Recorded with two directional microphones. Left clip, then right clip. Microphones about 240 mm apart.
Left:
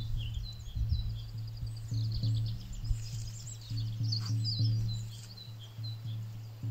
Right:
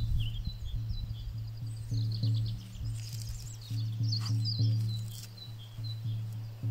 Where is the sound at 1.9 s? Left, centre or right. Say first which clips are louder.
Right 2 dB; right.